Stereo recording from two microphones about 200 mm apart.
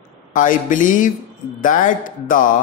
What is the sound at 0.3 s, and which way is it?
Speech, 40° left (ahead or behind).